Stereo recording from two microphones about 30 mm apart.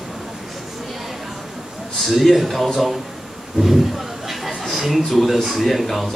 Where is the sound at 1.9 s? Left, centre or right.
Centre.